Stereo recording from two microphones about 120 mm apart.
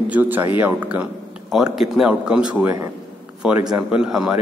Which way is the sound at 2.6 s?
20° right (ahead or behind).